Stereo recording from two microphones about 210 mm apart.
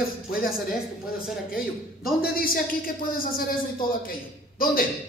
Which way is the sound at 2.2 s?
45° left (ahead or behind).